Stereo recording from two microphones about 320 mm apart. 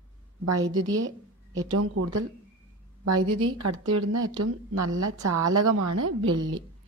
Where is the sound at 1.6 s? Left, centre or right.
Right.